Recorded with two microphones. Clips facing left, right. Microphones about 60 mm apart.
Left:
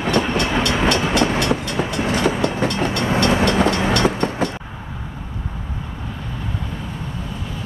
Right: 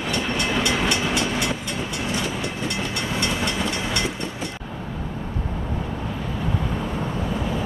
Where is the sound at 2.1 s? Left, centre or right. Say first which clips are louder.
Left 9 dB; left.